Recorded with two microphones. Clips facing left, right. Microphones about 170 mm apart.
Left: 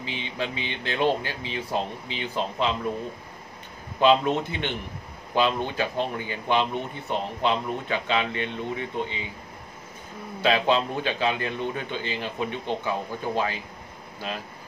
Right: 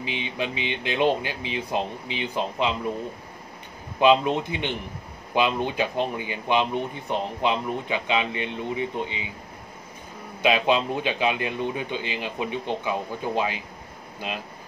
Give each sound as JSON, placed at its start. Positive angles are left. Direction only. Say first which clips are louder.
{"t": 0.0, "sound": "speech", "louder": "right 2 dB", "side_deg": -15}
{"t": 4.0, "sound": "speech", "louder": "right 1 dB", "side_deg": -15}
{"t": 10.4, "sound": "speech", "louder": "right 1 dB", "side_deg": -15}